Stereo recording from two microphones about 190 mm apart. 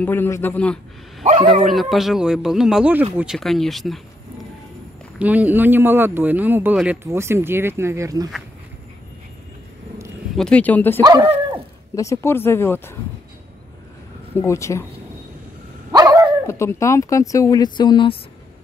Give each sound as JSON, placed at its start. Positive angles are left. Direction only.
{"t": 0.0, "sound": "speech", "side_deg": 10}
{"t": 1.2, "sound": "speech", "side_deg": -35}
{"t": 1.6, "sound": "speech", "side_deg": 0}
{"t": 5.2, "sound": "speech", "side_deg": -10}
{"t": 10.3, "sound": "speech", "side_deg": 5}
{"t": 11.0, "sound": "speech", "side_deg": -20}
{"t": 11.9, "sound": "speech", "side_deg": 15}
{"t": 14.3, "sound": "speech", "side_deg": 15}
{"t": 15.9, "sound": "dog", "side_deg": -15}
{"t": 16.4, "sound": "speech", "side_deg": 15}